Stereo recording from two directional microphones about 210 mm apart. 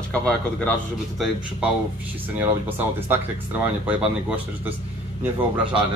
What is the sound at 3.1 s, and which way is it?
Speech, 10° right (ahead or behind).